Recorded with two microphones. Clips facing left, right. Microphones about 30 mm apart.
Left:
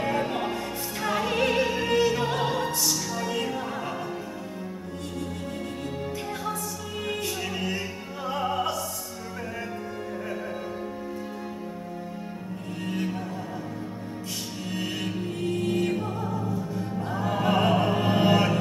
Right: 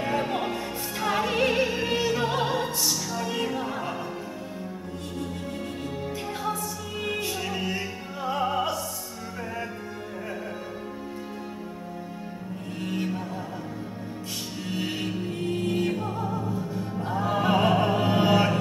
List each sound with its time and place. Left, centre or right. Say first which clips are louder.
0.0 s music: even; centre
2.4 s opera: even; centre
3.3 s music: right 2 dB; centre
7.4 s music: even; centre
12.8 s music: right 1 dB; centre
14.8 s music: right 1 dB; centre
15.0 s music: even; centre
15.4 s music: left 1 dB; centre
16.3 s music: even; right
17.1 s music: right 1 dB; centre